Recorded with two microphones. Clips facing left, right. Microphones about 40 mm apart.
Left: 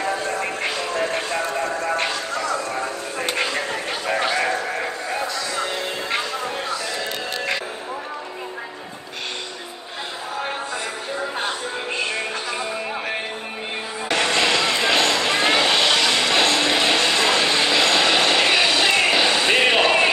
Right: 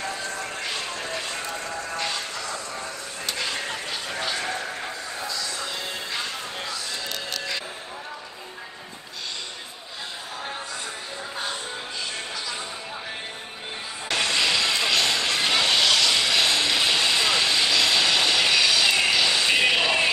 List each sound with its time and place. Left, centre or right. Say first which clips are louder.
0.0 s music: left 7 dB; left
11.3 s music: left 5 dB; left
14.0 s music: left 4 dB; left
15.2 s vehicle: left 4 dB; left
19.0 s a sound: left 4 dB; left